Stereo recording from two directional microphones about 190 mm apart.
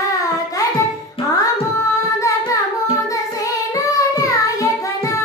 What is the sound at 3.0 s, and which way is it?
Child singing, 15° left (ahead or behind).